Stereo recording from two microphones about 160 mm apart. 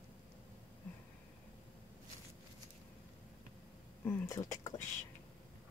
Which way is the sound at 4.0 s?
15° left (ahead or behind).